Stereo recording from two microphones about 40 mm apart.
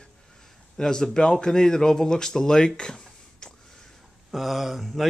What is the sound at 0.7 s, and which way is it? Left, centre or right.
Speech, centre.